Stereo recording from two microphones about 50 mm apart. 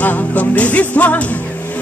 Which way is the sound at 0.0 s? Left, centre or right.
Left.